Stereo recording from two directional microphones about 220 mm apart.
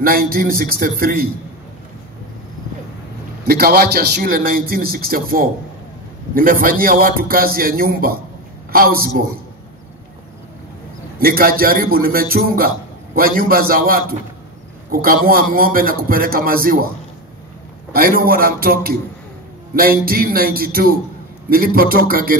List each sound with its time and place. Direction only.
0.0 s a man's voice: 40° right (ahead or behind)
3.4 s a man's voice: 45° right (ahead or behind)
11.1 s a man's voice: 40° right (ahead or behind)
17.9 s a man's voice: 40° right (ahead or behind)